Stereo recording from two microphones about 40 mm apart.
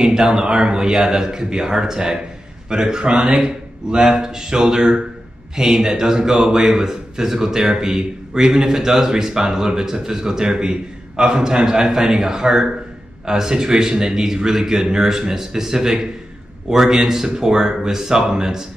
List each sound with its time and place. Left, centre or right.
0.0 s speech: centre